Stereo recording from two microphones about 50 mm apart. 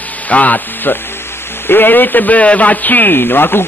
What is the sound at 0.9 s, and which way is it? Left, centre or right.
A man's voice, left.